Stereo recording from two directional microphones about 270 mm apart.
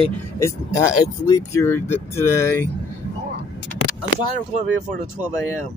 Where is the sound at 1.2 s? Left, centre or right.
Centre.